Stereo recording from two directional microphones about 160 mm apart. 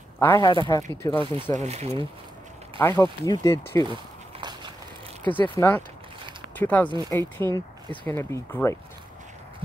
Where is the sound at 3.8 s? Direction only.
30° right (ahead or behind).